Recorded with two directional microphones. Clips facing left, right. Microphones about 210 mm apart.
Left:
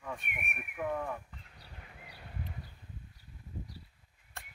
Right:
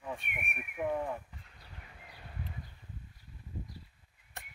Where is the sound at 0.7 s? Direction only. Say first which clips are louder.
Right 2 dB; 15° right (ahead or behind).